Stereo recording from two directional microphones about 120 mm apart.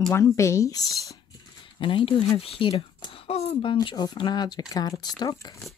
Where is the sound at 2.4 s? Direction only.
50° left (ahead or behind).